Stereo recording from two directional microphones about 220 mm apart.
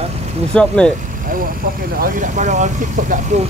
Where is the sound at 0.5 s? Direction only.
5° left (ahead or behind).